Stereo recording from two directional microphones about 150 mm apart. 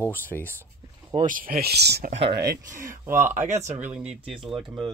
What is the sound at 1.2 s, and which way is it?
Speech, 70° right (ahead or behind).